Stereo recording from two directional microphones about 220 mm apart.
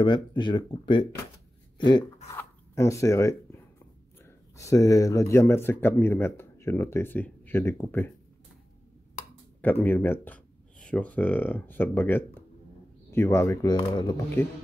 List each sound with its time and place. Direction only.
0.0 s speech: 20° left (ahead or behind)
2.2 s speech: 15° left (ahead or behind)
4.6 s speech: 15° left (ahead or behind)
9.6 s speech: 10° left (ahead or behind)